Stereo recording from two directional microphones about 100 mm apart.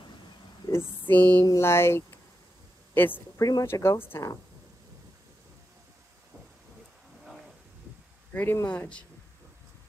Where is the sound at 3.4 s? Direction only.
40° left (ahead or behind).